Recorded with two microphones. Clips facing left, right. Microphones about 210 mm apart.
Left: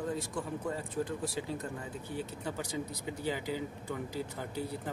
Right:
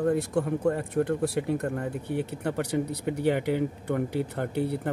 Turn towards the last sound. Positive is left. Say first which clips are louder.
# right 9 dB
turn(degrees=-65)  # may be behind; listen again after turning